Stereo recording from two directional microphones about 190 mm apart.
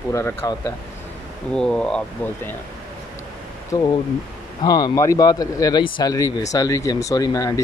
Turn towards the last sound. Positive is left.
turn(degrees=20)  # may be behind; listen again after turning